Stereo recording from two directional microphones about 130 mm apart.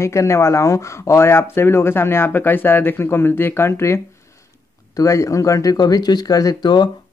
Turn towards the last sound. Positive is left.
turn(degrees=30)  # may be behind; listen again after turning